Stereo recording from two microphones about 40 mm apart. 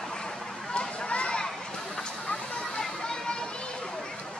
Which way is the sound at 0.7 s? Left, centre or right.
Left.